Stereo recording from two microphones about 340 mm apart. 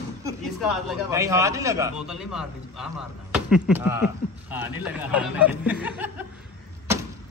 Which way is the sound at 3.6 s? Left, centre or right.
Centre.